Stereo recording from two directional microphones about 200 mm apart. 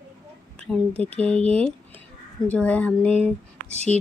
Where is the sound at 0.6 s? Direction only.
5° left (ahead or behind).